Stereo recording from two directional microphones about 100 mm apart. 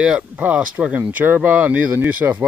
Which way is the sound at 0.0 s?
10° right (ahead or behind).